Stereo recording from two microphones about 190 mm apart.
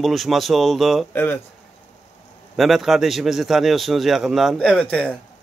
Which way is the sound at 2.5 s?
Centre (ahead or behind).